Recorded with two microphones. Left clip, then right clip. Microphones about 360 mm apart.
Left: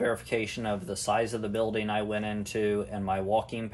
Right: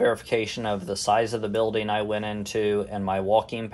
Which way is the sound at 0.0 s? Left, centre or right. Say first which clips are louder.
Right 6 dB; right.